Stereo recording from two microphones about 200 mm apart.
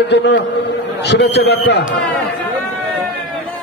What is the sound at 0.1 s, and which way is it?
A man's voice, 60° left (ahead or behind).